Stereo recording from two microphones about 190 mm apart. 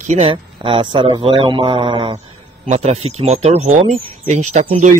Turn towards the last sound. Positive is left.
turn(degrees=-35)  # may be behind; listen again after turning